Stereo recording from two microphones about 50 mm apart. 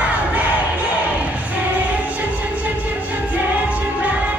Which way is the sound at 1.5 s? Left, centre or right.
Right.